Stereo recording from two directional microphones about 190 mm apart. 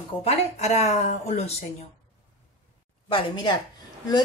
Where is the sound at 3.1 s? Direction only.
25° left (ahead or behind).